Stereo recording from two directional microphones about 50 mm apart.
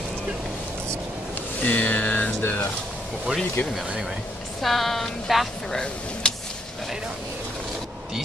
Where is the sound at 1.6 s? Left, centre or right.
Left.